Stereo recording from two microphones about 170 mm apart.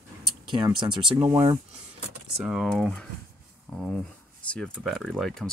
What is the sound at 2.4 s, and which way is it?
Speech, centre (ahead or behind).